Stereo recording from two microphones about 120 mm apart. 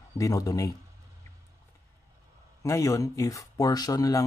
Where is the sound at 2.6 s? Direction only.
30° left (ahead or behind).